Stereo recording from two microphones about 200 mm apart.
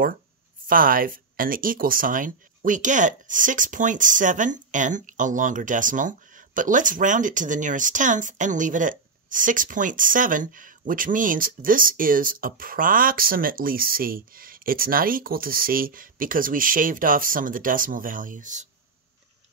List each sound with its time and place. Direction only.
0.7 s speech: 45° right (ahead or behind)